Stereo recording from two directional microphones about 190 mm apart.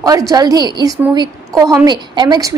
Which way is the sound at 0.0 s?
20° right (ahead or behind).